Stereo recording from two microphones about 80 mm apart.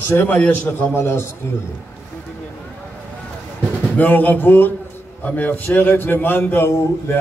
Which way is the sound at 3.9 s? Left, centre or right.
Left.